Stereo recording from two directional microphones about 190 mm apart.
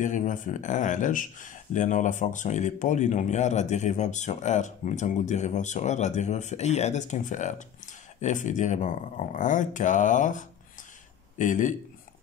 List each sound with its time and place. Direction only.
0.0 s speech: 40° left (ahead or behind)